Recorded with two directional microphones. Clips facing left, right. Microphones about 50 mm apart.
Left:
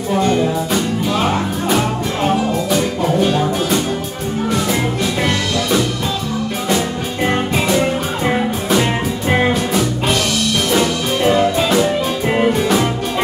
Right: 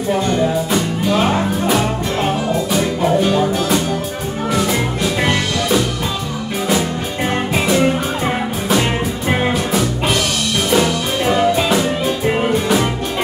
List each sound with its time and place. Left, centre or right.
8.2 s music: centre
11.2 s music: centre